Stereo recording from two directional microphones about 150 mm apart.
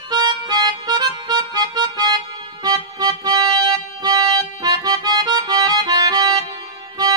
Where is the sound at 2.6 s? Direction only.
25° right (ahead or behind).